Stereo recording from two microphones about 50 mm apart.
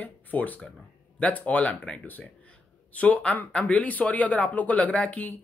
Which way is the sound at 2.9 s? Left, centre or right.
Left.